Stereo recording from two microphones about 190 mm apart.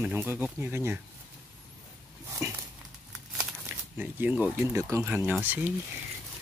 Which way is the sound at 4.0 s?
10° right (ahead or behind).